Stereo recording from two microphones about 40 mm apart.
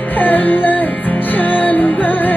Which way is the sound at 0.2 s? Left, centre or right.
Left.